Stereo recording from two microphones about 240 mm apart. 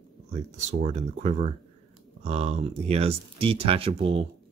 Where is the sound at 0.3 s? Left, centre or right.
Right.